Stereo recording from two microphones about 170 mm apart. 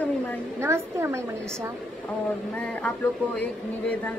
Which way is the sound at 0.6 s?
15° right (ahead or behind).